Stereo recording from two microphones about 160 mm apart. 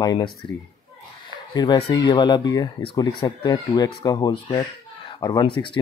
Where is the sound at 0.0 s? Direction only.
25° left (ahead or behind).